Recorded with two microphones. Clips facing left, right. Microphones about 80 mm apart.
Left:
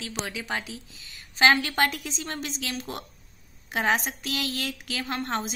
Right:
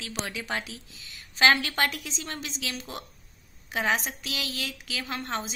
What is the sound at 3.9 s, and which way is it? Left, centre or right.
Speech, centre.